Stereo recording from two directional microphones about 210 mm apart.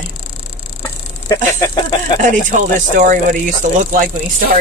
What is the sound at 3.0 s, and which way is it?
Speech, 40° right (ahead or behind).